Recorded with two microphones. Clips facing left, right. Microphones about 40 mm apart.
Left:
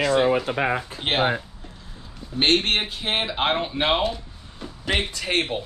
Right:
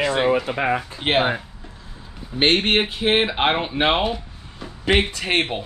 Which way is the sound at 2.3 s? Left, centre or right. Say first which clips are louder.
Right 3 dB; right.